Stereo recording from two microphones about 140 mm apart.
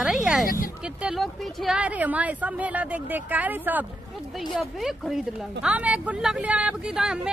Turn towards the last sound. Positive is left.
turn(degrees=-5)  # may be behind; listen again after turning